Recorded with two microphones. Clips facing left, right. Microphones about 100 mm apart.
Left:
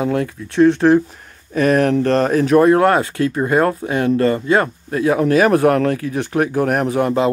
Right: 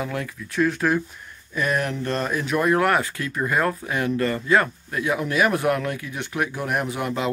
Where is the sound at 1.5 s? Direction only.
55° left (ahead or behind).